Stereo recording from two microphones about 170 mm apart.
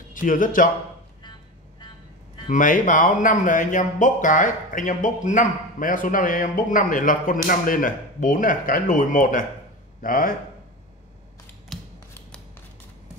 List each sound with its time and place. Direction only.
0.1 s a man's voice: 50° left (ahead or behind)
2.4 s a man's voice: 50° left (ahead or behind)
11.7 s scissors: centre (ahead or behind)
12.1 s scissors: 15° left (ahead or behind)